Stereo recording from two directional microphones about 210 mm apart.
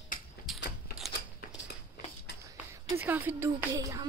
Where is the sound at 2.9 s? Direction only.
10° right (ahead or behind).